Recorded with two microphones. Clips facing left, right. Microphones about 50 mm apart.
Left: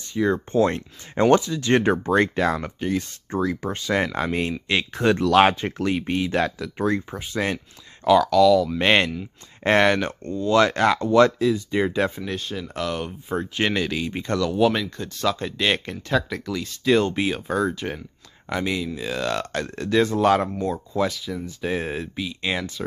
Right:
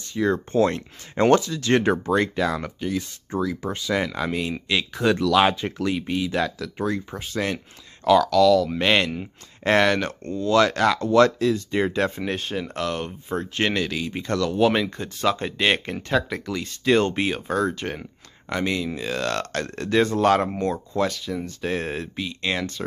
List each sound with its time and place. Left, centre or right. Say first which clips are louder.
0.1 s speech: left 1 dB; centre
2.0 s speech: left 2 dB; left
7.1 s speech: left 1 dB; centre
11.8 s speech: even; centre
12.3 s speech: right 2 dB; centre
12.7 s speech: left 2 dB; centre
13.3 s speech: even; centre
14.7 s speech: right 2 dB; centre